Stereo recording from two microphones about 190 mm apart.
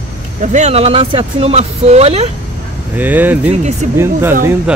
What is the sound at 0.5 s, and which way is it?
Speech, 35° right (ahead or behind).